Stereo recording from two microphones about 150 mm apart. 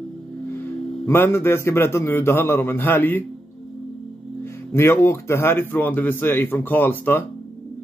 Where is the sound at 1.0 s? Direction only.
15° left (ahead or behind).